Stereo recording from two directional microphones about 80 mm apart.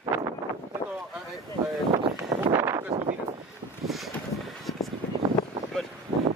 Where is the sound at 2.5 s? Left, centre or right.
Right.